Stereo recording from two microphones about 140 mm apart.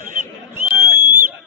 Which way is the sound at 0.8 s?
15° right (ahead or behind).